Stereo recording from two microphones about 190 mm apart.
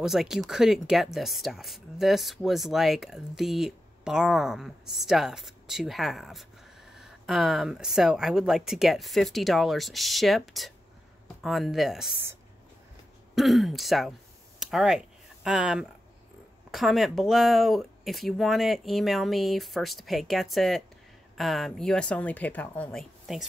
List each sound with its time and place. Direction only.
0.0 s speech: centre (ahead or behind)
13.3 s speech: centre (ahead or behind)